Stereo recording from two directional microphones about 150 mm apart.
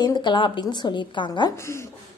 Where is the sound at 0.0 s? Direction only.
30° left (ahead or behind).